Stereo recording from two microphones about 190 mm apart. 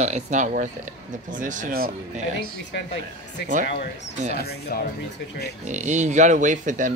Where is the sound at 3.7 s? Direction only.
65° left (ahead or behind).